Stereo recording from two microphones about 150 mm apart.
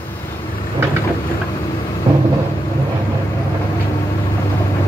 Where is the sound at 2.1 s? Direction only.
35° right (ahead or behind).